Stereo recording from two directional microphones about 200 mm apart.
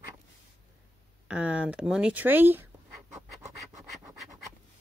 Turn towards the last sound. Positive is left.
turn(degrees=-15)  # may be behind; listen again after turning